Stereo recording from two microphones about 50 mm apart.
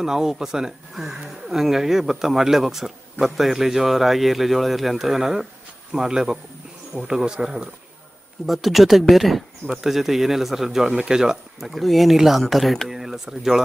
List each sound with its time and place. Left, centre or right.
0.0 s speech: centre
8.5 s speech: centre